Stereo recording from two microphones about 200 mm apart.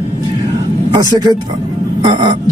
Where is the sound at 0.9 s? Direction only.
20° right (ahead or behind).